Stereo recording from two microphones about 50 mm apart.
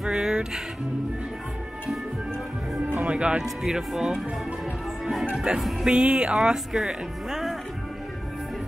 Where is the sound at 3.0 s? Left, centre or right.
Right.